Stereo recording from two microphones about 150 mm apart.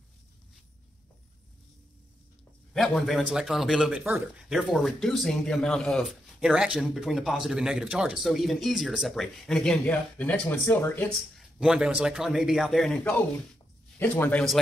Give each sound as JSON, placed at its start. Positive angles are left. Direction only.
{"t": 2.7, "sound": "speech", "side_deg": 0}
{"t": 11.3, "sound": "speech", "side_deg": 0}